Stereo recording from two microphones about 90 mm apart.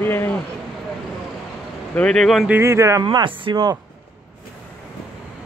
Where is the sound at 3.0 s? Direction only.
65° right (ahead or behind).